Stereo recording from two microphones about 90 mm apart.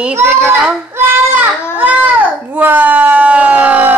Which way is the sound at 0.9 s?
25° right (ahead or behind).